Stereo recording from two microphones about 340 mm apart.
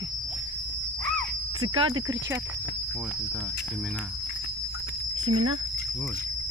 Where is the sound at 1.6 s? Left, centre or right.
Centre.